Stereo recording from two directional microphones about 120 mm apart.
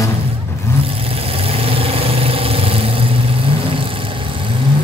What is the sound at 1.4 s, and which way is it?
Vehicle, 50° right (ahead or behind).